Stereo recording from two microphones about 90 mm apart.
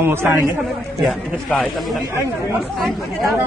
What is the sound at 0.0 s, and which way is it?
A man's voice, 25° right (ahead or behind).